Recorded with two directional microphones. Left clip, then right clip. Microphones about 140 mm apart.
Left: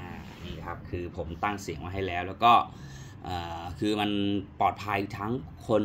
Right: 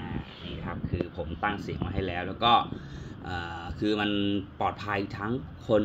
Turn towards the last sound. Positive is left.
turn(degrees=20)  # may be behind; listen again after turning